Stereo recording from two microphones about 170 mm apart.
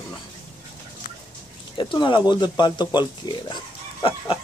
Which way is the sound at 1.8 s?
30° left (ahead or behind).